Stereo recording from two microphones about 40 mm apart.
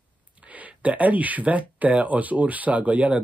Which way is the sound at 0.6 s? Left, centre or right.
Right.